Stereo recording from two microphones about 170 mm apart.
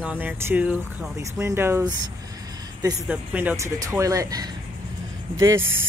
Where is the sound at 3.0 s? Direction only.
10° right (ahead or behind).